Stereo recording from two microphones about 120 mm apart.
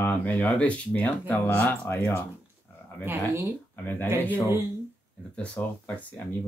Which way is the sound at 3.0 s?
20° right (ahead or behind).